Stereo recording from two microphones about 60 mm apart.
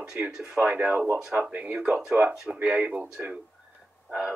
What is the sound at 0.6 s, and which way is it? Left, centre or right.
Speech, right.